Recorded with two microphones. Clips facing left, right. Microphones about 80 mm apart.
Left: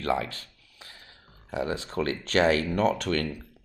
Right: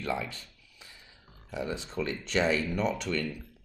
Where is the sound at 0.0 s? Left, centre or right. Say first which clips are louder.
Left 5 dB; left.